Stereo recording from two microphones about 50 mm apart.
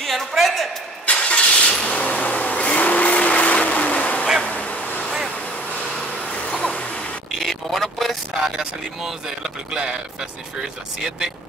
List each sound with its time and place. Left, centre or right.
0.0 s a man's voice: centre
1.0 s vehicle: left
5.9 s a sound: left
7.3 s vehicle: centre
8.4 s speech: centre